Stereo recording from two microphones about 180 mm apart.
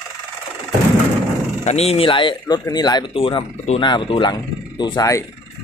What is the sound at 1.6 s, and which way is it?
Speech, 35° left (ahead or behind).